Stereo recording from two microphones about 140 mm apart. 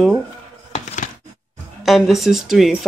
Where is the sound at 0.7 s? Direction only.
60° left (ahead or behind).